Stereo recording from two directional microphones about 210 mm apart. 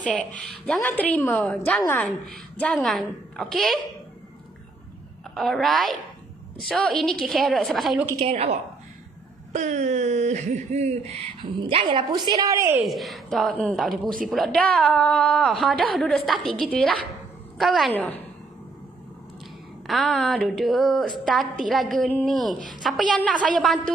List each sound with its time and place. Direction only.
0.0 s a woman's voice: 5° left (ahead or behind)
5.3 s a woman's voice: centre (ahead or behind)
8.2 s a woman's voice: 30° right (ahead or behind); by 12.8 s 10° right (ahead or behind)
12.8 s a woman's voice: centre (ahead or behind)
19.9 s a woman's voice: centre (ahead or behind)